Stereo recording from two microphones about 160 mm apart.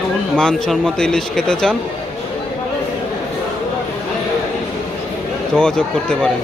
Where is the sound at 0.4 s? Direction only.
5° left (ahead or behind).